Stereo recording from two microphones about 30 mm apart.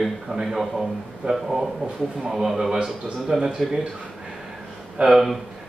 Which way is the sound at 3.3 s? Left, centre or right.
Centre.